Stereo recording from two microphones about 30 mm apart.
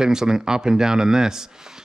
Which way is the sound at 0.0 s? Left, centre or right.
Right.